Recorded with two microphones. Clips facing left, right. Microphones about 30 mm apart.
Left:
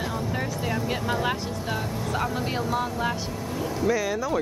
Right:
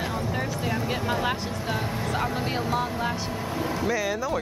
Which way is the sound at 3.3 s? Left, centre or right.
Right.